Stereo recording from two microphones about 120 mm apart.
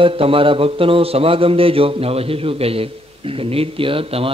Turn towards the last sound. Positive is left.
turn(degrees=-50)  # may be behind; listen again after turning